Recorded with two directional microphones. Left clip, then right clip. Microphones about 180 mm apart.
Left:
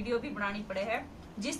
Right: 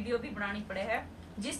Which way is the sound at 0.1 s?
Centre (ahead or behind).